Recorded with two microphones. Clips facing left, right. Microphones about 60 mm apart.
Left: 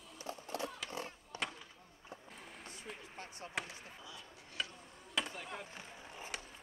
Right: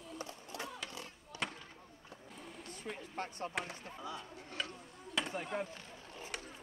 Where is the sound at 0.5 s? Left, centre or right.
Left.